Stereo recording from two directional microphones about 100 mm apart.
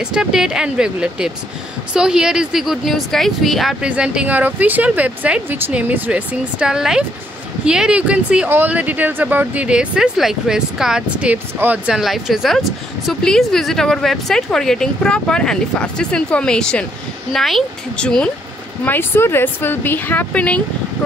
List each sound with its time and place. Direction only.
0.0 s speech: 5° right (ahead or behind)
3.8 s speech: 10° right (ahead or behind)
12.0 s speech: centre (ahead or behind)
18.9 s speech: 25° left (ahead or behind)